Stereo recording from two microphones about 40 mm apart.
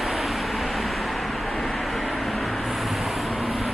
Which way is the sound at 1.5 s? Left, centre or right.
Centre.